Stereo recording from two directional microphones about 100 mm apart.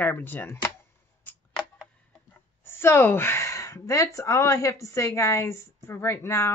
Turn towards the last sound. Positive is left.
turn(degrees=25)  # may be behind; listen again after turning